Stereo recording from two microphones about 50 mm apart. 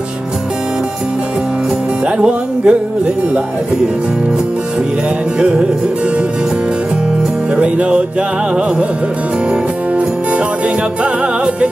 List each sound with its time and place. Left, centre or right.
2.0 s speech: centre
5.4 s music: right
7.5 s music: right